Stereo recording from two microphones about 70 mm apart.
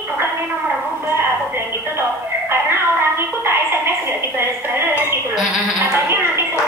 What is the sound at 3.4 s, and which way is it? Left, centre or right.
Music, right.